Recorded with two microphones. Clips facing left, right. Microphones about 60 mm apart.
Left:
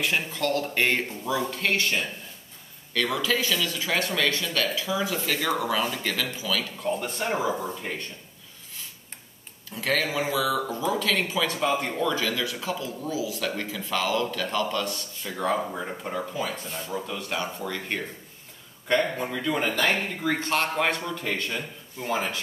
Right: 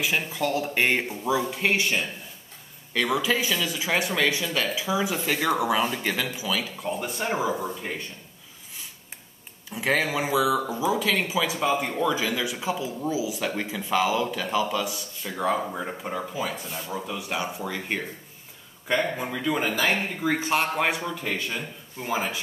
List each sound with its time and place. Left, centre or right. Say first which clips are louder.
0.0 s speech: right 1 dB; centre
9.7 s speech: right 2 dB; centre